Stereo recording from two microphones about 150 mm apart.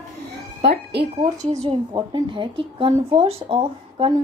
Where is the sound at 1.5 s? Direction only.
45° right (ahead or behind).